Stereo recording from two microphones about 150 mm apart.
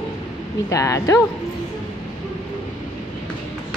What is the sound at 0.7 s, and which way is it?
Speech, 20° left (ahead or behind).